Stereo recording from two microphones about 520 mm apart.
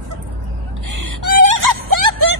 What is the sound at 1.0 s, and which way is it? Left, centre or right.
Whimper, right.